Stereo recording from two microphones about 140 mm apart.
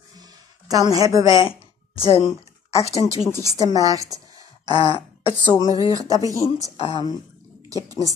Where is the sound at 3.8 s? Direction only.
25° right (ahead or behind).